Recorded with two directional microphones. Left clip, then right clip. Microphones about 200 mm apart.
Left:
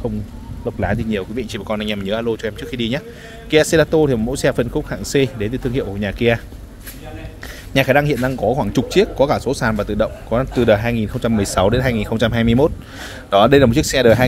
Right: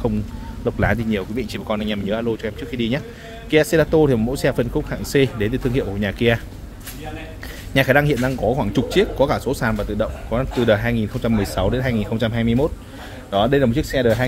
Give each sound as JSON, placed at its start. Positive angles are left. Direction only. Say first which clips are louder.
{"t": 0.7, "sound": "speech", "louder": "right 1 dB", "side_deg": 5}
{"t": 1.7, "sound": "speech", "louder": "left 2 dB", "side_deg": 25}
{"t": 7.7, "sound": "speech", "louder": "left 1 dB", "side_deg": 10}